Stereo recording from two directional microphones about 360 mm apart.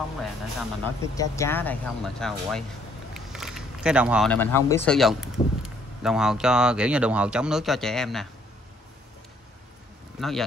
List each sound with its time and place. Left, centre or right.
0.2 s speech: centre
10.2 s speech: centre